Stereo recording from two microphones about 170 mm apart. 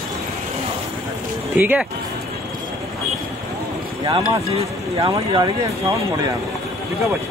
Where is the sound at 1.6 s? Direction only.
10° right (ahead or behind).